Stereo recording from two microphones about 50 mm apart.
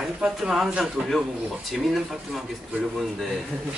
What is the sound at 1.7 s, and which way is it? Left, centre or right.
Speech, centre.